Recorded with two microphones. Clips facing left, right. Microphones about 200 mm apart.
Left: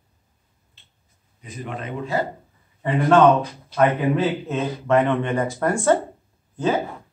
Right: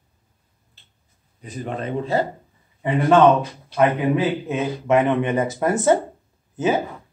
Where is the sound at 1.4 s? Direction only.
35° right (ahead or behind).